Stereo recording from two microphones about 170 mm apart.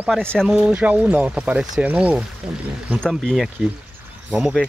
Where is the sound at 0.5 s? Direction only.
5° right (ahead or behind).